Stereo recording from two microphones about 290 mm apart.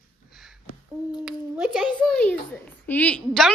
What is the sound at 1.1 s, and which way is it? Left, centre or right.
Speech, centre.